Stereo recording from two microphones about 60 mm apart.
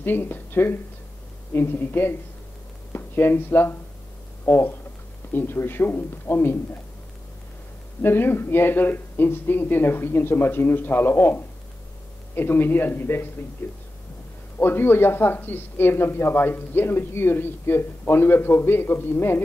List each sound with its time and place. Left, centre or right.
0.0 s speech: left
8.0 s speech: left